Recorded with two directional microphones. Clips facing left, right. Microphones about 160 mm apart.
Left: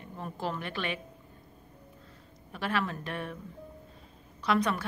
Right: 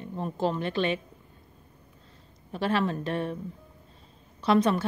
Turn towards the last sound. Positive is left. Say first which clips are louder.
# right 5 dB
turn(degrees=-25)  # may be behind; listen again after turning